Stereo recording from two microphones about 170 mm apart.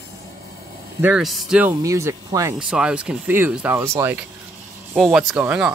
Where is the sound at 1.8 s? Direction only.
20° right (ahead or behind).